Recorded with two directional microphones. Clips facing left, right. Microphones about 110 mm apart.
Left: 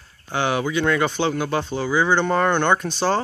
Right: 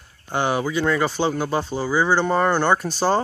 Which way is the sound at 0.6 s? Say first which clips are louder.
Even; 5° right (ahead or behind).